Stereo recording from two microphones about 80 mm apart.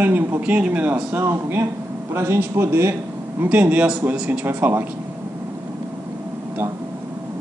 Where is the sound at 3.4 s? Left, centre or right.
Right.